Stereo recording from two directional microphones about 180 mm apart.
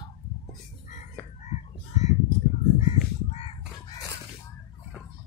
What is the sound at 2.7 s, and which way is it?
Crow, 40° left (ahead or behind).